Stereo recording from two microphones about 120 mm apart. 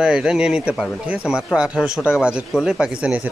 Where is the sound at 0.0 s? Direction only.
5° right (ahead or behind).